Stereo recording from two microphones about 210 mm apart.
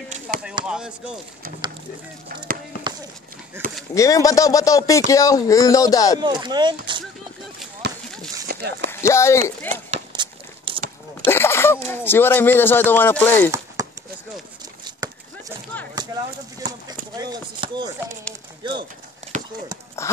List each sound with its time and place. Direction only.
0.3 s chop: 5° right (ahead or behind)
0.7 s speech: 5° right (ahead or behind)
3.9 s speech: 15° left (ahead or behind)
6.1 s speech: 20° right (ahead or behind)
7.8 s a sound: 55° right (ahead or behind)
8.9 s speech: 15° left (ahead or behind)
9.7 s speech: 35° right (ahead or behind)
10.1 s a sound: 25° right (ahead or behind)
11.2 s a sound: 10° left (ahead or behind)
11.9 s speech: 10° left (ahead or behind)
13.8 s a sound: 15° right (ahead or behind)
16.5 s speech: 20° right (ahead or behind)
19.3 s clip-clop: 35° right (ahead or behind)
20.0 s speech: 15° left (ahead or behind)